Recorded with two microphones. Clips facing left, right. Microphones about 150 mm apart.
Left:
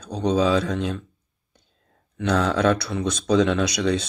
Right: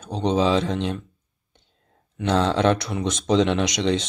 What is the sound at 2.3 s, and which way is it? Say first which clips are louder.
Speech: right 1 dB; 25° right (ahead or behind).